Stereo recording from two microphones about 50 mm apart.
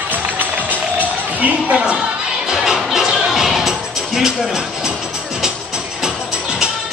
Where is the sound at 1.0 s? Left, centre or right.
Right.